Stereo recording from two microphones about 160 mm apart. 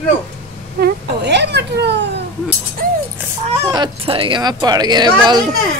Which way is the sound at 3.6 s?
25° right (ahead or behind).